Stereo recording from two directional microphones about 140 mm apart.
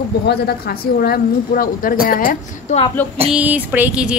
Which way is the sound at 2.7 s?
55° left (ahead or behind).